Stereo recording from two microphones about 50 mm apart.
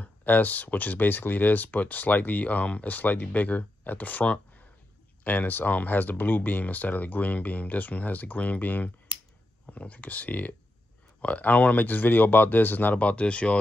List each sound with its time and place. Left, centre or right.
0.0 s speech: left